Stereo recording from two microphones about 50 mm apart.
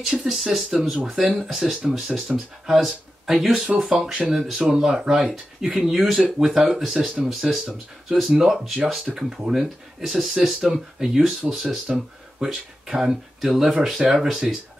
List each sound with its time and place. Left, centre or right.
0.0 s speech: centre
0.3 s speech: centre
3.6 s speech: centre